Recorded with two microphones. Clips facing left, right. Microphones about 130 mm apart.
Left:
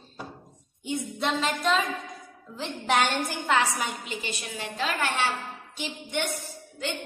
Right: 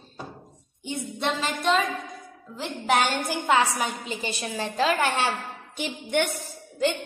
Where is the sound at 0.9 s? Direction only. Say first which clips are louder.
Even; centre (ahead or behind).